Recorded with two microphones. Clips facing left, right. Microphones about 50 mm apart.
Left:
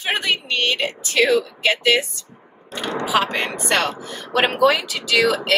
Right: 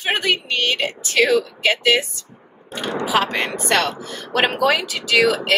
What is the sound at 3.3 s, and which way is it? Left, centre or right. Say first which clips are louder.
A woman's voice: right 1 dB; centre.